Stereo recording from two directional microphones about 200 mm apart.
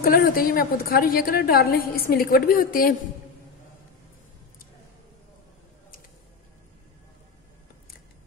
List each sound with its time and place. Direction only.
0.0 s a woman's voice: 45° left (ahead or behind)